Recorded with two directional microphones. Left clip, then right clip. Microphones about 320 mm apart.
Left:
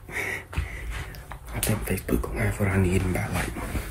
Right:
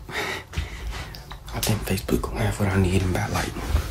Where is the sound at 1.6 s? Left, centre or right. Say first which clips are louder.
Right 2 dB; centre.